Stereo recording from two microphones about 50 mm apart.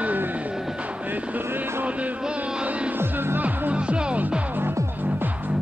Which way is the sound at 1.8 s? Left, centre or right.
Right.